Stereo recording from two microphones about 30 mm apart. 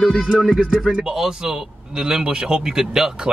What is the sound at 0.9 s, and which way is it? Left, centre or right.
A man's voice, right.